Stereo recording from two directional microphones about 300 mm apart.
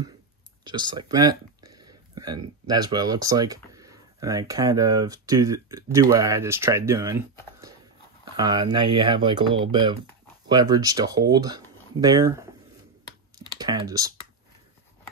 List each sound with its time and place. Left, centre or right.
0.7 s speech: centre
8.4 s speech: centre
13.6 s speech: centre